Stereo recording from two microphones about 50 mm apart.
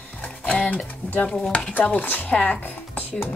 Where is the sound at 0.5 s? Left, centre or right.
Left.